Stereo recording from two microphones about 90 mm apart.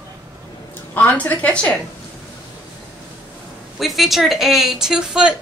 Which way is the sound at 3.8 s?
Centre (ahead or behind).